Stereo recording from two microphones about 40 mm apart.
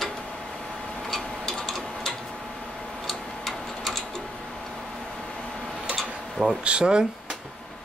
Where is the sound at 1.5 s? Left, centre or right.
Centre.